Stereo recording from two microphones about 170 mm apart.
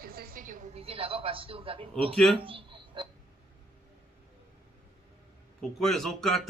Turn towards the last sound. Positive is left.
turn(degrees=0)  # may be behind; listen again after turning